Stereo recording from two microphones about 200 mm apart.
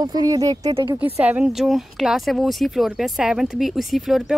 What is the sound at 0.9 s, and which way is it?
Speech, 10° right (ahead or behind).